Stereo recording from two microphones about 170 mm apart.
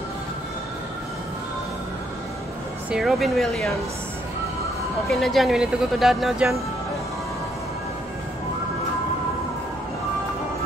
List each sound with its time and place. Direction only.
2.9 s speech: centre (ahead or behind)
5.1 s speech: centre (ahead or behind)